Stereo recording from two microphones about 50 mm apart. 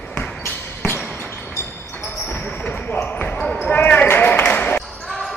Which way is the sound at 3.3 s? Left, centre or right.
Left.